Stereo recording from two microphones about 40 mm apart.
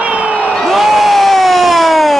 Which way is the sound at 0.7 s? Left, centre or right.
Centre.